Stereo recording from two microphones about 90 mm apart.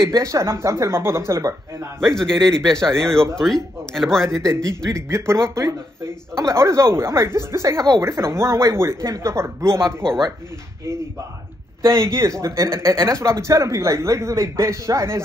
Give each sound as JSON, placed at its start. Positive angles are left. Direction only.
{"t": 0.0, "sound": "a man's voice", "side_deg": -35}
{"t": 2.0, "sound": "a man's voice", "side_deg": 5}
{"t": 4.9, "sound": "a man's voice", "side_deg": -30}
{"t": 10.0, "sound": "a man's voice", "side_deg": 5}
{"t": 11.9, "sound": "a man's voice", "side_deg": -35}